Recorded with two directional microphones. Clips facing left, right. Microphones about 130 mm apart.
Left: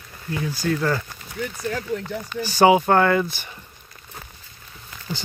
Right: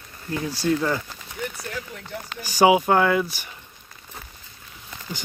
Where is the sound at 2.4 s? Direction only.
10° right (ahead or behind).